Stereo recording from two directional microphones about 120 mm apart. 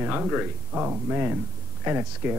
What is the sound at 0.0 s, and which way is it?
Speech, 15° right (ahead or behind).